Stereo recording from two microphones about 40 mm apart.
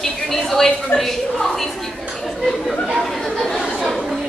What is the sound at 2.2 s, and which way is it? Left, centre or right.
Chatter, centre.